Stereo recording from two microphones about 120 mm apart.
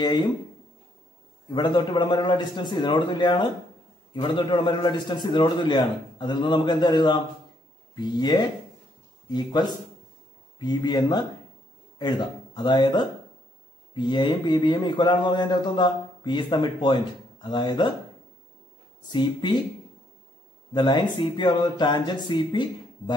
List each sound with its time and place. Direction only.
0.0 s speech: 35° left (ahead or behind)
1.5 s speech: 40° left (ahead or behind)
19.0 s speech: 35° left (ahead or behind)
21.2 s speech: 40° left (ahead or behind)